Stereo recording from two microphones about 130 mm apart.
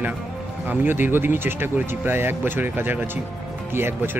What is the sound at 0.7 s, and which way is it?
Speech, 15° right (ahead or behind).